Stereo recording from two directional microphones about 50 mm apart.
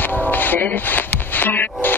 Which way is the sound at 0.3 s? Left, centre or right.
Left.